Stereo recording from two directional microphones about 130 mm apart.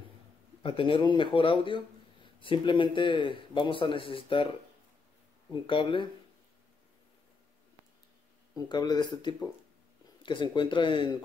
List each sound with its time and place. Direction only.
0.6 s a man's voice: 40° left (ahead or behind)
5.5 s a man's voice: 40° left (ahead or behind)
8.5 s a man's voice: 30° left (ahead or behind)